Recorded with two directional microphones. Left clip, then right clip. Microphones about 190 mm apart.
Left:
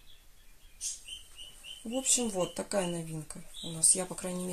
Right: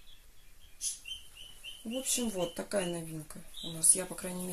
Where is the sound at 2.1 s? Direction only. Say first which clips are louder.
Left 3 dB; 25° left (ahead or behind).